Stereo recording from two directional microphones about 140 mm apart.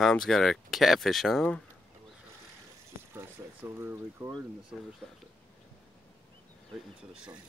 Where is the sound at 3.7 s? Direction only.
20° right (ahead or behind).